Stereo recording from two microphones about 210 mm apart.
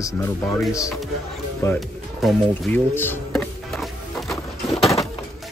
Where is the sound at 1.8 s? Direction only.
Centre (ahead or behind).